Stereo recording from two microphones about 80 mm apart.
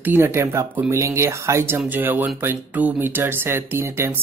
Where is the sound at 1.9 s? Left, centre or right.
Right.